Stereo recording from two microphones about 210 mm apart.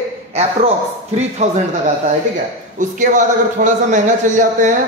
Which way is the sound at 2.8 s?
35° right (ahead or behind).